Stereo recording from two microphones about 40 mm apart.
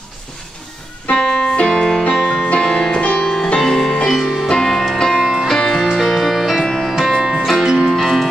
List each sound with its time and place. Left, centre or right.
1.1 s music: centre
3.2 s music: centre
7.0 s music: centre
7.9 s music: centre